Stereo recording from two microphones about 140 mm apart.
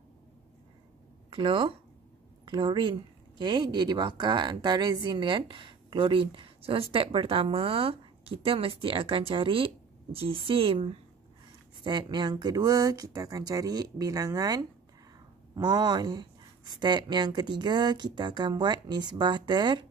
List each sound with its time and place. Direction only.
1.3 s speech: 35° right (ahead or behind)
11.8 s speech: 35° right (ahead or behind)